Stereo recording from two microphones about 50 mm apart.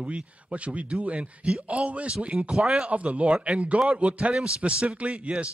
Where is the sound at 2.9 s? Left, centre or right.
Right.